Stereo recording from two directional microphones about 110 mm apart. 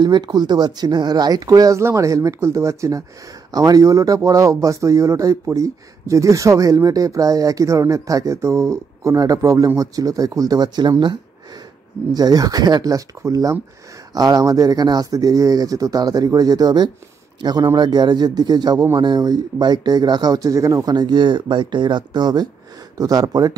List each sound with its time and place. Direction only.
0.0 s speech: 40° right (ahead or behind)